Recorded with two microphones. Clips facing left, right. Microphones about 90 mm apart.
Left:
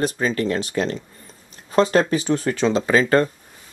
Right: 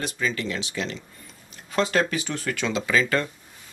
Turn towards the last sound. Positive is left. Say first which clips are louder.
# left 6 dB
turn(degrees=40)  # may be behind; listen again after turning